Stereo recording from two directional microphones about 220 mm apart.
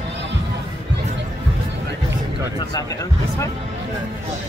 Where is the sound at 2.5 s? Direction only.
15° left (ahead or behind).